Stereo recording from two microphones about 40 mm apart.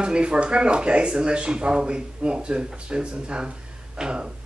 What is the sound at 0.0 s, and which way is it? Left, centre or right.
Speech, right.